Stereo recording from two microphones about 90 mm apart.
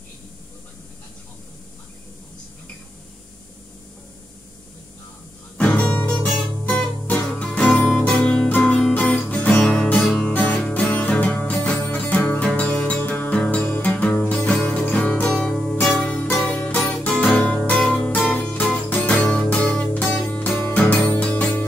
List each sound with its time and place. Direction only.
5.6 s music: 10° left (ahead or behind)
6.2 s guitar: 20° left (ahead or behind)
7.2 s music: 10° left (ahead or behind)
16.0 s music: 15° left (ahead or behind)